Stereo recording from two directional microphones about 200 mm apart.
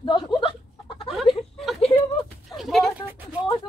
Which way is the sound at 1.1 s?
Centre (ahead or behind).